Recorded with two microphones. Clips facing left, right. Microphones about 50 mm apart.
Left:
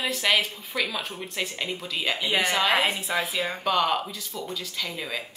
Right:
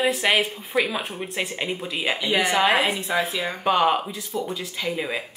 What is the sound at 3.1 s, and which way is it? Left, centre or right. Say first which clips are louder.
Speech: right 6 dB; centre.